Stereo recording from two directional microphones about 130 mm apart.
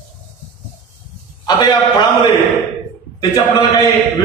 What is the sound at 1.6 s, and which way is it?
Speech, 35° left (ahead or behind).